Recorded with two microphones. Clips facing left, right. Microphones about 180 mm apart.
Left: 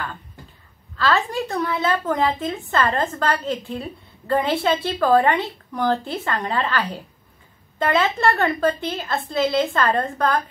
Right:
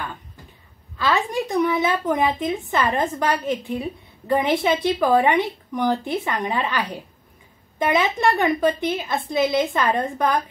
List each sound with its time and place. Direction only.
0.9 s a woman's voice: 15° right (ahead or behind)